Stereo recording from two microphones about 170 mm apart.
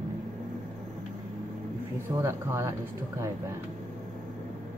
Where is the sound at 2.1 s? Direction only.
15° right (ahead or behind).